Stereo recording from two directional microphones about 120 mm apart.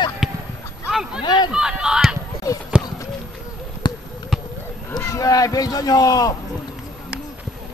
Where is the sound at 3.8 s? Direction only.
40° left (ahead or behind).